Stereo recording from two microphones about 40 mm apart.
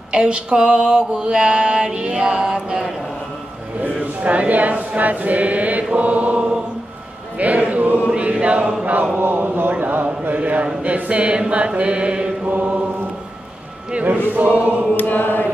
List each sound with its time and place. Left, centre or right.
0.1 s mantra: right
3.8 s choir: right
7.3 s music: right
8.0 s choir: right
9.2 s speech: right
9.8 s a sound: right
10.8 s mantra: right
12.4 s choir: right
14.3 s choir: right
15.0 s chant: left